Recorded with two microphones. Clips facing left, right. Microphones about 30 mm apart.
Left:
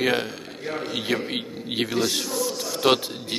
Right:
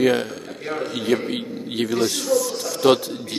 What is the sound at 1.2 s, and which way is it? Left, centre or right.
A man's voice, centre.